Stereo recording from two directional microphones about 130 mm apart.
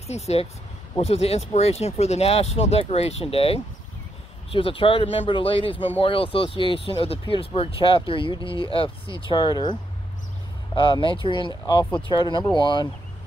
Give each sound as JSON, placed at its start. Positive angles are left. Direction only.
{"t": 0.0, "sound": "speech", "side_deg": 55}